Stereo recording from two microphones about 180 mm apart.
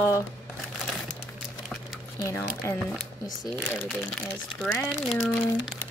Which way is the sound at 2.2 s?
15° left (ahead or behind).